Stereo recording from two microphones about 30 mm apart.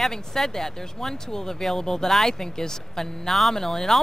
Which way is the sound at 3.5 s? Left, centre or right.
Centre.